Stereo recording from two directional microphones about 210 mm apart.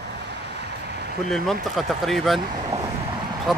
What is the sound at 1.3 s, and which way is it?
Speech, centre (ahead or behind).